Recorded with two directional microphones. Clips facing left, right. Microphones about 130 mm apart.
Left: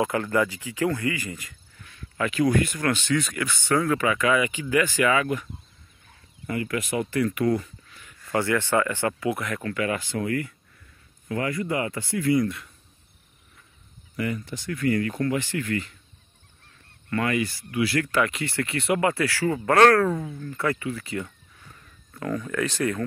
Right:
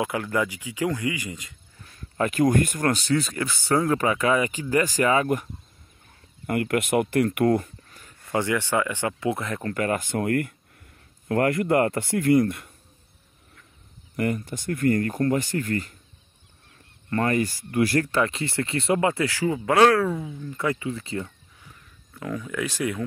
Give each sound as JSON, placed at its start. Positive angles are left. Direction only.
{"t": 0.0, "sound": "speech", "side_deg": -10}
{"t": 1.8, "sound": "speech", "side_deg": -40}
{"t": 6.4, "sound": "speech", "side_deg": -55}
{"t": 8.3, "sound": "speech", "side_deg": -15}
{"t": 14.1, "sound": "speech", "side_deg": -50}
{"t": 17.1, "sound": "speech", "side_deg": -40}
{"t": 18.1, "sound": "speech", "side_deg": -30}
{"t": 19.4, "sound": "speech", "side_deg": -10}
{"t": 21.6, "sound": "speech", "side_deg": -5}